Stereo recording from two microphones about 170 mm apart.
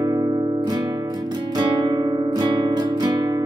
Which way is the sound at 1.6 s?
20° right (ahead or behind).